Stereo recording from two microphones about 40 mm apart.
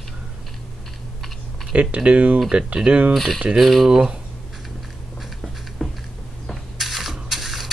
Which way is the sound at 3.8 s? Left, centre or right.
Centre.